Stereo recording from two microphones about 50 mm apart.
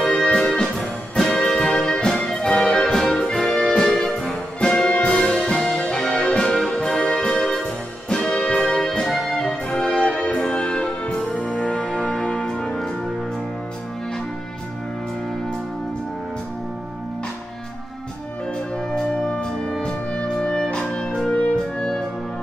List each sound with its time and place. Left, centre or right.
0.3 s music: centre
0.7 s music: centre
18.9 s music: centre